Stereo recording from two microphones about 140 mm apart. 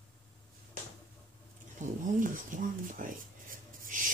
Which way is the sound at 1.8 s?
70° right (ahead or behind).